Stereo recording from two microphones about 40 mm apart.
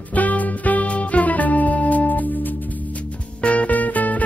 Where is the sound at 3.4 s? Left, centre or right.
Left.